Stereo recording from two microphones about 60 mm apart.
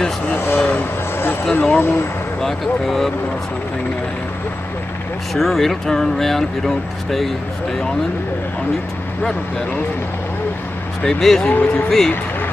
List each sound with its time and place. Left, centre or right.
0.4 s vehicle: left
1.5 s speech: left
2.4 s speech: centre
5.3 s speech: centre
11.0 s speech: centre